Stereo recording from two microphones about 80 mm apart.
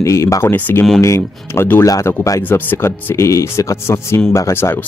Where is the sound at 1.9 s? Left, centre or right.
Left.